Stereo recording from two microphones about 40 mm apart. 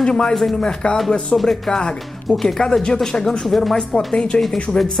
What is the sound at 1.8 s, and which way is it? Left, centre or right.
Speech, left.